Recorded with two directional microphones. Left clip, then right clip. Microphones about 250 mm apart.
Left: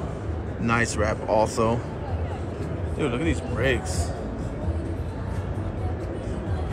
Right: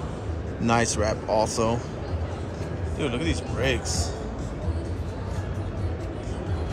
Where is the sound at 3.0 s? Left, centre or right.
Centre.